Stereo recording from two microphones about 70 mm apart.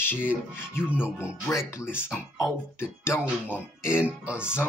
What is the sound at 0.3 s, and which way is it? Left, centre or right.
Speech, left.